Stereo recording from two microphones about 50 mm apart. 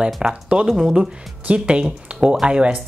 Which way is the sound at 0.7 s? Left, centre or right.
Centre.